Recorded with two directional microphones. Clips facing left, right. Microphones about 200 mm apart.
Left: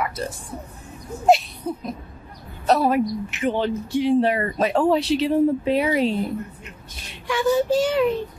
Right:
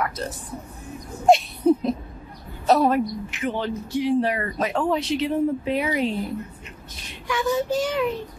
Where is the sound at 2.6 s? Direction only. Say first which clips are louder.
Right 1 dB; centre (ahead or behind).